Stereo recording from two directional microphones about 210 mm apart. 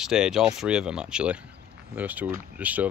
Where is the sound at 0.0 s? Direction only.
5° right (ahead or behind).